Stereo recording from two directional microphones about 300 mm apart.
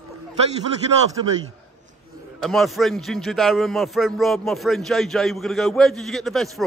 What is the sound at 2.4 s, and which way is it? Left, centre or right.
A man's voice, centre.